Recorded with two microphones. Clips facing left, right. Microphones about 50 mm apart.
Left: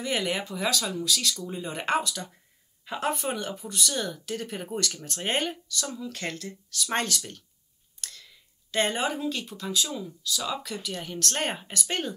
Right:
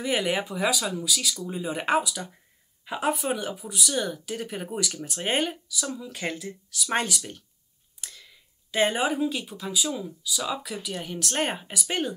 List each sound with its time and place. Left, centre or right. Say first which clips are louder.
0.0 s speech: right 3 dB; centre